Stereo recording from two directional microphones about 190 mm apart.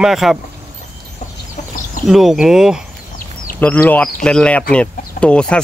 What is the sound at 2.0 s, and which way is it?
Speech, centre (ahead or behind).